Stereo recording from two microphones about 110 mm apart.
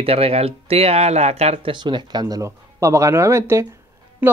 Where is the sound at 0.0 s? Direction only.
60° right (ahead or behind).